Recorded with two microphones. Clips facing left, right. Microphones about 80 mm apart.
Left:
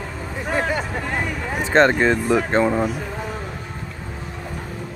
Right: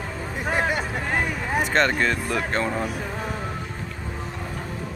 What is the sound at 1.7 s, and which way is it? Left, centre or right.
Speech, left.